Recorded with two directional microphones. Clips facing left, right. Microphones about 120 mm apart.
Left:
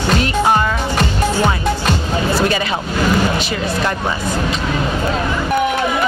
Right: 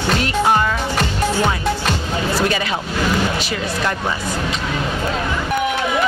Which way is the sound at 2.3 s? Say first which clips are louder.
Left 2 dB; 30° left (ahead or behind).